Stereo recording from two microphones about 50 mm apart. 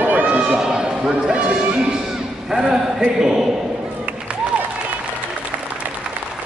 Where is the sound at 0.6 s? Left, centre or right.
Centre.